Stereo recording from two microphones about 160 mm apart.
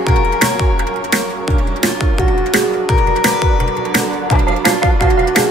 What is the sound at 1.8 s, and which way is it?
Music, centre (ahead or behind).